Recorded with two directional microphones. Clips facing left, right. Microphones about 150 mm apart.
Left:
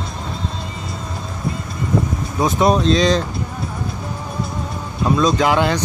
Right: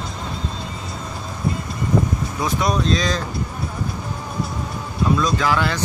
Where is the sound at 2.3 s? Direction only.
25° left (ahead or behind).